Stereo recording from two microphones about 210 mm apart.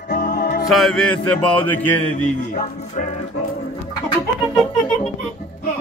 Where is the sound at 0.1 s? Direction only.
40° left (ahead or behind).